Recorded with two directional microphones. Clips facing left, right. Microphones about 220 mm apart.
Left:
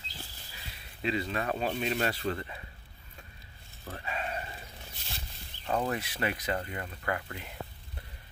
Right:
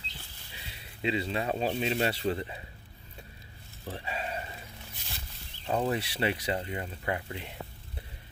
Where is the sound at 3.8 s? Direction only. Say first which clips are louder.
Right 1 dB; 30° right (ahead or behind).